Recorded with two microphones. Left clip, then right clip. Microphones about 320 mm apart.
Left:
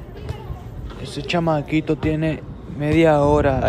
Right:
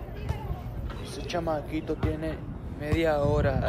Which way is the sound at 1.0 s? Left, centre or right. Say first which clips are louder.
Left 10 dB; centre.